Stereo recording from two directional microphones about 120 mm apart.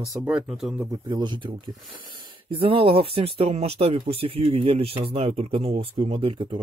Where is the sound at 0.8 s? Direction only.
30° right (ahead or behind).